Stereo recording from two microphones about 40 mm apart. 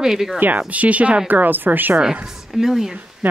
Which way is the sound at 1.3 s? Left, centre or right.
Right.